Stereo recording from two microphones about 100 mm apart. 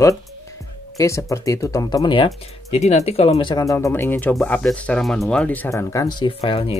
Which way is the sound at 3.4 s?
50° left (ahead or behind).